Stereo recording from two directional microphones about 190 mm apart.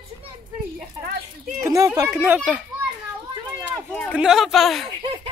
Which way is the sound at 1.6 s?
20° right (ahead or behind).